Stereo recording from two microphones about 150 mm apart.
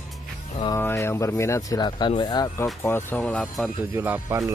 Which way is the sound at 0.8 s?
15° left (ahead or behind).